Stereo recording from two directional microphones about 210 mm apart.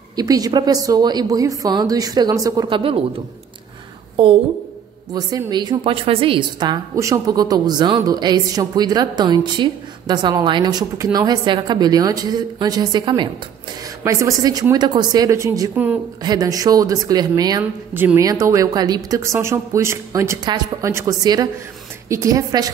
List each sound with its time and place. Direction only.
0.1 s a woman's voice: 15° right (ahead or behind)
4.2 s a woman's voice: 25° right (ahead or behind)